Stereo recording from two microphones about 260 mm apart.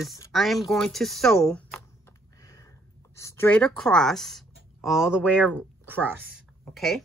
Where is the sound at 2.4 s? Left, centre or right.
Centre.